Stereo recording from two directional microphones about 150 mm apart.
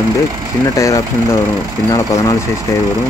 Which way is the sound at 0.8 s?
20° left (ahead or behind).